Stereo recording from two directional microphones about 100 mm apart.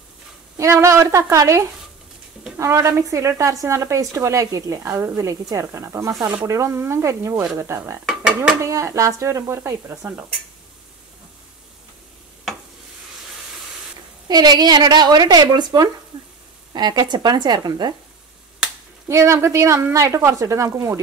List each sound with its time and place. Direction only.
0.6 s a woman's voice: 30° right (ahead or behind)
8.0 s speech: centre (ahead or behind)
8.5 s speech: 30° right (ahead or behind)
14.2 s a woman's voice: 45° right (ahead or behind)
19.0 s a woman's voice: 30° right (ahead or behind)